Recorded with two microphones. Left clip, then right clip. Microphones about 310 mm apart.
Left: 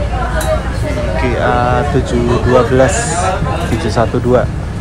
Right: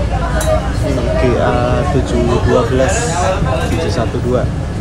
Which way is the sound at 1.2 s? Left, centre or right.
Centre.